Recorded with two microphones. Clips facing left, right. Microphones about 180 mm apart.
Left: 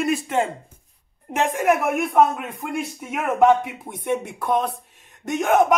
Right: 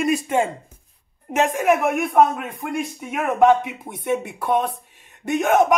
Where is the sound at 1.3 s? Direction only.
Centre (ahead or behind).